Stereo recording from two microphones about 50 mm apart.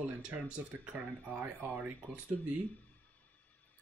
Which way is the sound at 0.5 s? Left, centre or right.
Right.